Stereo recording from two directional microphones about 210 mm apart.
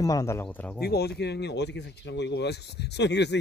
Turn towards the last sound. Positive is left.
turn(degrees=55)  # may be behind; listen again after turning